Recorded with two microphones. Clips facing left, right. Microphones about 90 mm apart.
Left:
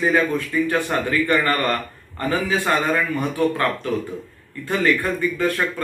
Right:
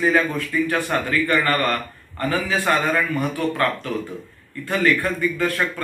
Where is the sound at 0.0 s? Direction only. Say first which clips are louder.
Even; 20° left (ahead or behind).